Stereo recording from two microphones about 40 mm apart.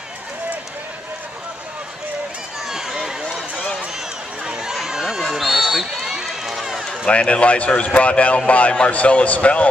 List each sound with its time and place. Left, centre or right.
2.7 s a sound: centre
4.5 s run: centre
7.1 s speech: left